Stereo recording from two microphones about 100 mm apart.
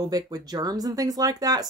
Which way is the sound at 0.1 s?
40° right (ahead or behind).